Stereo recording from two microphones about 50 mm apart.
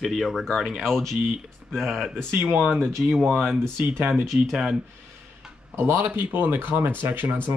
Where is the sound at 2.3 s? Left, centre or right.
Right.